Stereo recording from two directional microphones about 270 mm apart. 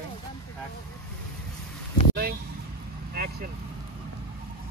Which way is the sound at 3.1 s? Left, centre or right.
Right.